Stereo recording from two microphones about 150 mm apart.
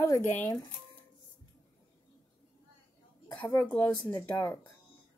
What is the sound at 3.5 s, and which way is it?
Speech, 10° left (ahead or behind).